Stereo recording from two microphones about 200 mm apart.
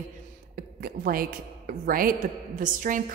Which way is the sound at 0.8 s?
45° right (ahead or behind).